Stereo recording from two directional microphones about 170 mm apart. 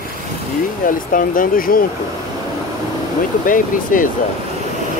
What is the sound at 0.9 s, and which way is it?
Speech, 55° left (ahead or behind).